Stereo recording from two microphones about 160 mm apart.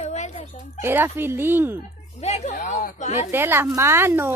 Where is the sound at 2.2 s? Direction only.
45° left (ahead or behind).